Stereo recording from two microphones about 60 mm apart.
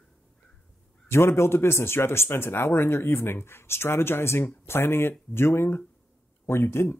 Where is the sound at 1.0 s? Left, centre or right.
Left.